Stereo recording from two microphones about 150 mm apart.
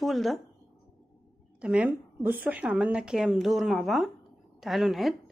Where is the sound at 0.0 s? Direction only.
Centre (ahead or behind).